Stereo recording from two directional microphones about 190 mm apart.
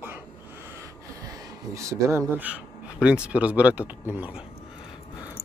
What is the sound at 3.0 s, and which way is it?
Speech, 5° right (ahead or behind).